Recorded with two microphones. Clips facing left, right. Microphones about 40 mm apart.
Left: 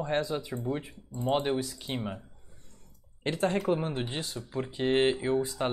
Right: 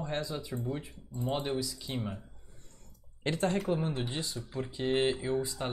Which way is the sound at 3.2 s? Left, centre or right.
Centre.